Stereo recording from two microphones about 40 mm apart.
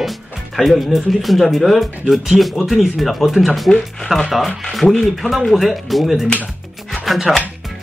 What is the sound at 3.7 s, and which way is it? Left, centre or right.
Speech, centre.